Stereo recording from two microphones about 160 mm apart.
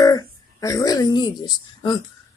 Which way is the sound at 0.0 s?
20° left (ahead or behind).